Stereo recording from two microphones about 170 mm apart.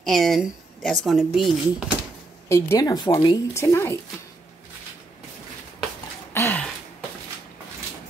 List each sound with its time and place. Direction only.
0.0 s speech: centre (ahead or behind)
2.5 s speech: 20° left (ahead or behind)
3.6 s speech: 15° left (ahead or behind)
6.3 s a sound: 10° left (ahead or behind)